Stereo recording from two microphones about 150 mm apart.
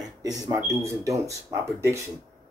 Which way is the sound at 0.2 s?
25° right (ahead or behind).